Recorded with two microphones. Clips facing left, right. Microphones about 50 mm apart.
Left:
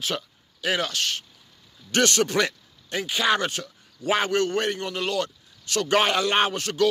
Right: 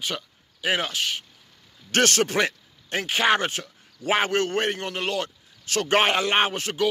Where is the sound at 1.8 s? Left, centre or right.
Right.